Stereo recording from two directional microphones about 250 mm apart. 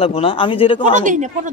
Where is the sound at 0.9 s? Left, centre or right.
Right.